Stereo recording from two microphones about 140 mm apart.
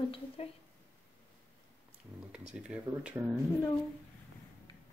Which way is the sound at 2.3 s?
5° right (ahead or behind).